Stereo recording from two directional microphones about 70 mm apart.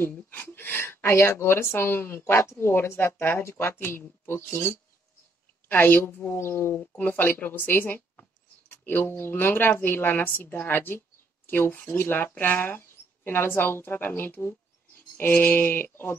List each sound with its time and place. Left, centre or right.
0.3 s a woman's voice: left